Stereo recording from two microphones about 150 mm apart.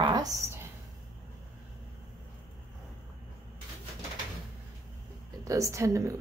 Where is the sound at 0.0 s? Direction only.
25° right (ahead or behind).